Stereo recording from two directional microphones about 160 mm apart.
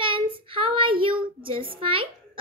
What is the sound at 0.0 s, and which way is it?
Child singing, 35° right (ahead or behind).